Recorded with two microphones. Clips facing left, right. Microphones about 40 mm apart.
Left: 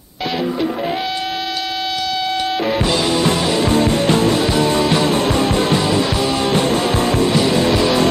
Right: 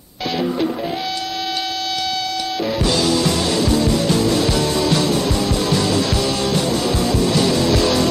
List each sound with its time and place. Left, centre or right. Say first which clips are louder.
2.8 s music: right 2 dB; left
3.6 s music: left 3 dB; left
4.4 s music: left 3 dB; left
7.3 s music: left 2 dB; left